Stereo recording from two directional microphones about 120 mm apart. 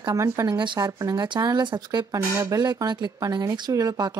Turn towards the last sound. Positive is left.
turn(degrees=-35)  # may be behind; listen again after turning